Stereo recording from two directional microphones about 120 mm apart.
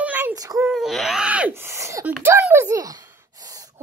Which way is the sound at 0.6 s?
Centre (ahead or behind).